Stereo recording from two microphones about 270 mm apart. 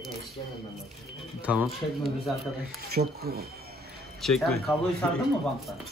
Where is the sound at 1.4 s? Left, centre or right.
Centre.